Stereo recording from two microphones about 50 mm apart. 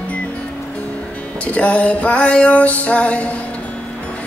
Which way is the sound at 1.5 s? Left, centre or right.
Left.